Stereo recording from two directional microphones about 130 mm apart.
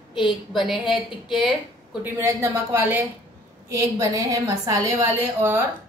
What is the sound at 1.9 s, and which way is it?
A woman's voice, 15° right (ahead or behind).